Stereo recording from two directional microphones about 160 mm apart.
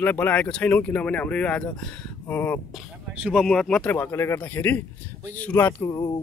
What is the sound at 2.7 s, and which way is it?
Speech, centre (ahead or behind).